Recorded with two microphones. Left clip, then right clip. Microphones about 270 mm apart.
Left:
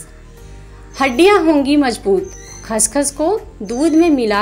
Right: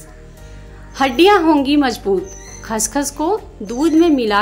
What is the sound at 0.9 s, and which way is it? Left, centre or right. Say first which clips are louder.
Speech: even; centre.